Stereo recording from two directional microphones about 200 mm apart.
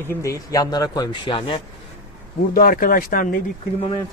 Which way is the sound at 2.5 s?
45° left (ahead or behind).